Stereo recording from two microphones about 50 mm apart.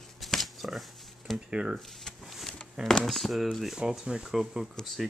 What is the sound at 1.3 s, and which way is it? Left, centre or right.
Speech, right.